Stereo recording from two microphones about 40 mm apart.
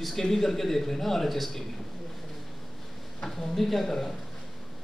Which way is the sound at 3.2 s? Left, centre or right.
Centre.